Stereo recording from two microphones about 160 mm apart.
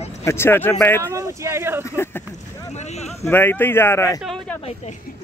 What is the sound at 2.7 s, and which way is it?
Speech, 45° left (ahead or behind).